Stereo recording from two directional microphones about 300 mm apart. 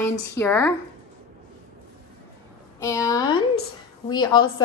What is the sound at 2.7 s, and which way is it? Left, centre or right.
A woman's voice, centre.